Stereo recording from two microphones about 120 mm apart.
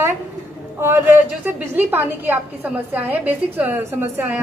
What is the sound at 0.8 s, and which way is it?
A woman's voice, 20° right (ahead or behind).